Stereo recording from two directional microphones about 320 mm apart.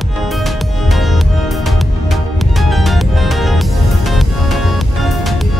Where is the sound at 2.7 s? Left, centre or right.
Centre.